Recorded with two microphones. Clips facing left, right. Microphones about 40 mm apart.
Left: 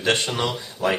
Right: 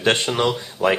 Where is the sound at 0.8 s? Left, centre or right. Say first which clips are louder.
Right 4 dB; right.